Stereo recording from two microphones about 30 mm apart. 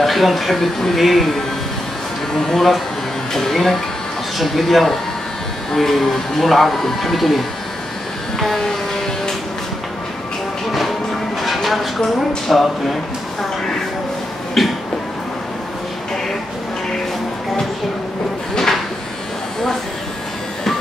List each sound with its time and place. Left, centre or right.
0.0 s speech: centre
2.3 s speech: left
4.4 s speech: centre
8.5 s music: centre
11.4 s speech: centre
14.6 s a sound: centre